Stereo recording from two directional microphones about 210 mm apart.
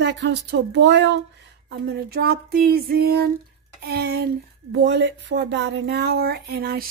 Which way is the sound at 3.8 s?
45° right (ahead or behind).